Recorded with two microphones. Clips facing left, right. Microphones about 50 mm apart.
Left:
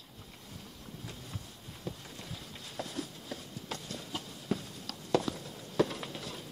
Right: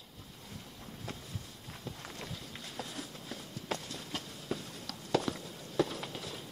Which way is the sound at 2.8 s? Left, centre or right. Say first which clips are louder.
Left 4 dB; centre.